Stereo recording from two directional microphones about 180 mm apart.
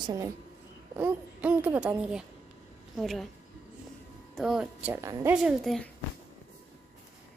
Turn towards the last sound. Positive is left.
turn(degrees=0)  # may be behind; listen again after turning